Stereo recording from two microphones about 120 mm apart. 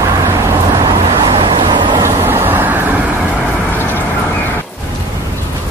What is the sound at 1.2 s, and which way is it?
Vehicle, 45° right (ahead or behind).